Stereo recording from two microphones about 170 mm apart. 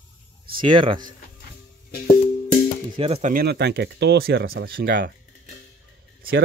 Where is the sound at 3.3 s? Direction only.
65° right (ahead or behind).